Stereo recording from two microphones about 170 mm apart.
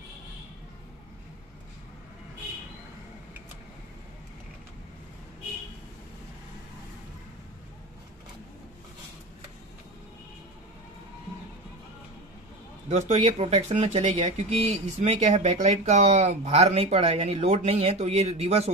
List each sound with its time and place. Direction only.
12.8 s speech: 40° right (ahead or behind)